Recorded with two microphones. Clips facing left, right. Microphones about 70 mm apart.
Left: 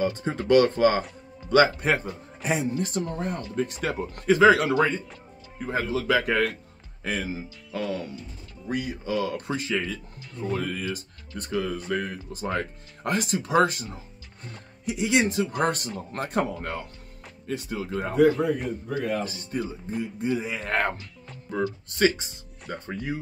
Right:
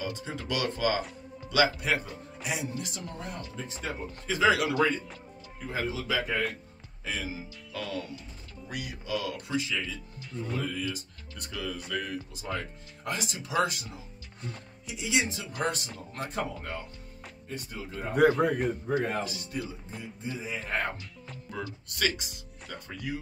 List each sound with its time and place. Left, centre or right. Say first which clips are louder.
0.0 s speech: left 9 dB; left
3.5 s speech: left 10 dB; left
4.4 s speech: left 5 dB; left
7.1 s speech: left 6 dB; left
7.7 s music: left 6 dB; left
8.6 s speech: left 8 dB; left
14.9 s speech: left 7 dB; left
17.5 s speech: left 9 dB; left
18.4 s a man's voice: left 1 dB; right
18.9 s speech: left 4 dB; right
19.2 s speech: left 5 dB; left
20.0 s speech: left 11 dB; left
21.5 s speech: left 10 dB; left